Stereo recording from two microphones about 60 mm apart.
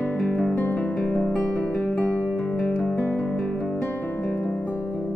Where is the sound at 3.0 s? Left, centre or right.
Left.